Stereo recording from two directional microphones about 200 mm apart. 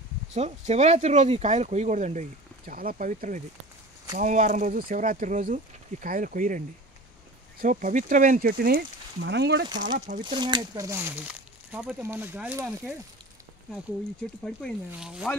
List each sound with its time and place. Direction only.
0.3 s speech: 35° right (ahead or behind); by 9.7 s 60° right (ahead or behind)
9.9 s speech: 40° right (ahead or behind)
10.2 s speech: 20° right (ahead or behind); by 12.9 s 5° right (ahead or behind)
14.9 s speech: 5° right (ahead or behind)